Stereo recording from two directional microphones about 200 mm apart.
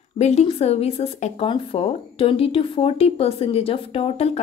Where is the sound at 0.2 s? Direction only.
30° left (ahead or behind).